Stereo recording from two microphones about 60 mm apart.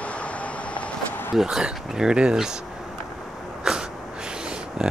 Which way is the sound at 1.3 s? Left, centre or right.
Centre.